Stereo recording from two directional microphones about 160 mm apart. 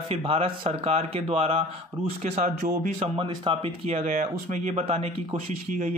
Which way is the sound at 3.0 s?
35° right (ahead or behind).